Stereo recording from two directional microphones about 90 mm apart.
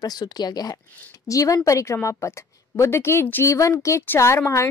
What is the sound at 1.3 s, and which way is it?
A woman's voice, 40° left (ahead or behind).